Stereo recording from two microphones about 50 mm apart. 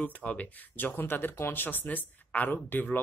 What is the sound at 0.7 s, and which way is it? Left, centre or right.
Speech, left.